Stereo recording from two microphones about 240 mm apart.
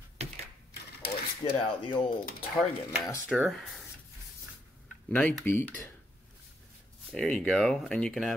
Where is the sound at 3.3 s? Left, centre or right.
Centre.